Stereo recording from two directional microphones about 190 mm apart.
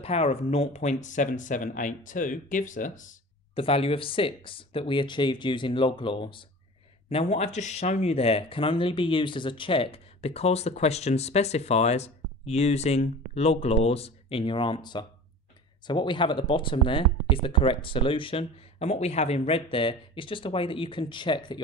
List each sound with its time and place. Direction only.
0.0 s speech: 30° left (ahead or behind)
3.5 s speech: 30° left (ahead or behind)